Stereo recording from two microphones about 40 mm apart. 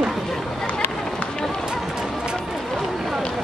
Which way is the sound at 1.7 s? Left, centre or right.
Centre.